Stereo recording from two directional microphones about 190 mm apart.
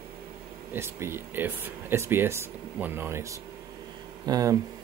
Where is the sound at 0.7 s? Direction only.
15° right (ahead or behind).